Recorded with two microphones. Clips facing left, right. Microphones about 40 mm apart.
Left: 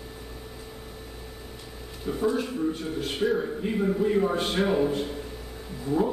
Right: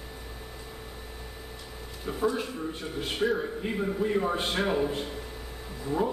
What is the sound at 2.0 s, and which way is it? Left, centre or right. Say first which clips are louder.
A man's voice: left 2 dB; centre.